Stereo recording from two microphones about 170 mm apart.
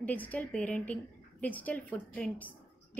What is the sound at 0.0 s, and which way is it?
A woman's voice, 10° left (ahead or behind).